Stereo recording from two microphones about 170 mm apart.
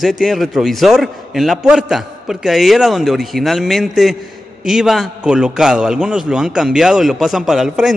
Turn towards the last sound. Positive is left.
turn(degrees=0)  # may be behind; listen again after turning